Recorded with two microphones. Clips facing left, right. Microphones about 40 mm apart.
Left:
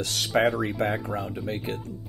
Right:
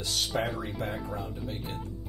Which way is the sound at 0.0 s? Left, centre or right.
Left.